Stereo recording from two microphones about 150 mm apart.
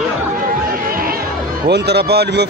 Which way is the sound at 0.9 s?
75° right (ahead or behind).